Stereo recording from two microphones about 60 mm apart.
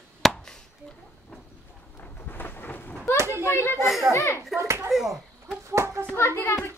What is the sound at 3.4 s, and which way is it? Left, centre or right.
Speech, left.